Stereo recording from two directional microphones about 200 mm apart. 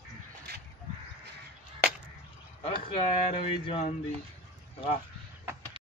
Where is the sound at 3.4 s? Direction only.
30° left (ahead or behind).